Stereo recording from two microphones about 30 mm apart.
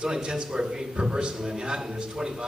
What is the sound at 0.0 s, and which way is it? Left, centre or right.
A man's voice, right.